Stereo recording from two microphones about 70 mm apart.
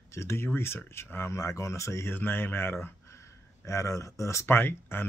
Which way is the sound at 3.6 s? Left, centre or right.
Left.